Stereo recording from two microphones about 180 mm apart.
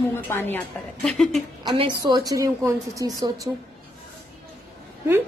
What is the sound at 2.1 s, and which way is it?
A woman's voice, 20° right (ahead or behind).